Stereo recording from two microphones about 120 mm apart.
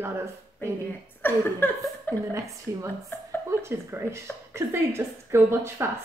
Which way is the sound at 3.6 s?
20° right (ahead or behind).